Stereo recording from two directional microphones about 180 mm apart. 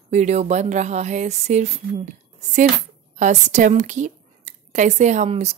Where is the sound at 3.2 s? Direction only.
40° right (ahead or behind).